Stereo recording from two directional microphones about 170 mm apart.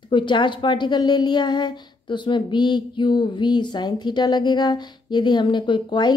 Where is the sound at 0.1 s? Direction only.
30° left (ahead or behind).